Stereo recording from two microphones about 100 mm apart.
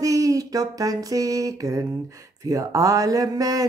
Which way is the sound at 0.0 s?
35° right (ahead or behind).